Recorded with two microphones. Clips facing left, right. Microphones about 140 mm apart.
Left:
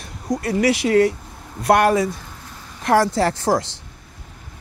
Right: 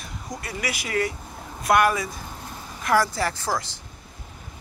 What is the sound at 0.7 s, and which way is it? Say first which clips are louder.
Speech: left 10 dB; 30° left (ahead or behind).